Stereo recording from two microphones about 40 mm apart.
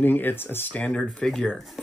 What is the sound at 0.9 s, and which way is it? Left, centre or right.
Speech, left.